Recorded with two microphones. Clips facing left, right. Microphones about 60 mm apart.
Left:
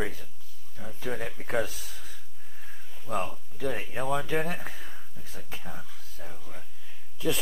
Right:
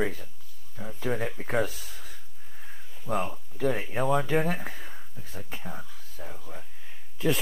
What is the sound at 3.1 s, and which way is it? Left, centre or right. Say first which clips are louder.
Speech: right 2 dB; centre.